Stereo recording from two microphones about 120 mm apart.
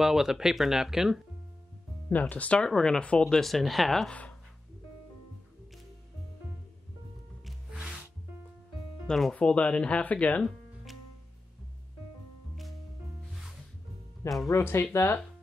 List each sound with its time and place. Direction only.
0.0 s speech: 5° right (ahead or behind)
2.0 s speech: 15° left (ahead or behind)
7.4 s music: 5° right (ahead or behind)
9.0 s speech: 5° left (ahead or behind)
14.5 s speech: 20° left (ahead or behind)